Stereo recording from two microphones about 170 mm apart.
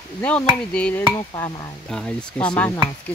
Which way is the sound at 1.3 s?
20° left (ahead or behind).